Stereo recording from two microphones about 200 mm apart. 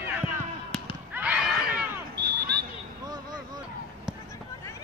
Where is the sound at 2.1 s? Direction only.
50° right (ahead or behind).